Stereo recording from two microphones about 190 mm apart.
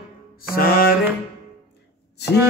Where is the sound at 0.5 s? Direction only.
50° left (ahead or behind).